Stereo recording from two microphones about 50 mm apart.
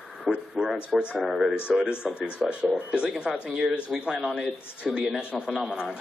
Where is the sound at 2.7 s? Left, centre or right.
Centre.